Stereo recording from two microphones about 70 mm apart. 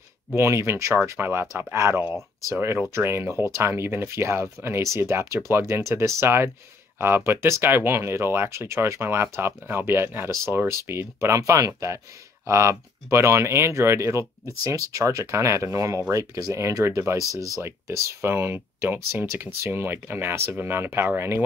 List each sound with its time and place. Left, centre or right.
0.4 s speech: right
16.5 s speech: right
17.2 s speech: right
17.6 s speech: right